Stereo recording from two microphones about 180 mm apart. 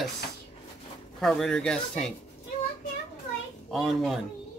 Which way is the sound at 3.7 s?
Centre (ahead or behind).